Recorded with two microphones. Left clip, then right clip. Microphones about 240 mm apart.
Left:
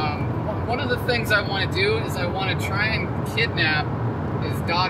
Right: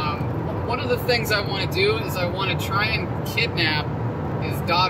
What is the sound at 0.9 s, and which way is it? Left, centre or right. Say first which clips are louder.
Speech: even; centre.